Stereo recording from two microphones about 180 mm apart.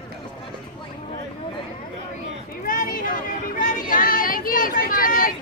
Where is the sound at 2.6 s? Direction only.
50° left (ahead or behind).